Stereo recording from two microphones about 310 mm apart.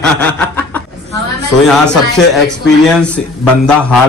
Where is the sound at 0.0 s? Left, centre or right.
Centre.